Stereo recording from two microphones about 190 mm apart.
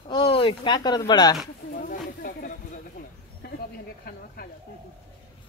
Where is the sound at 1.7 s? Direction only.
50° left (ahead or behind).